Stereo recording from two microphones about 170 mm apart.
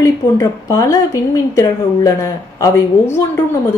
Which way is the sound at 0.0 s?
20° left (ahead or behind).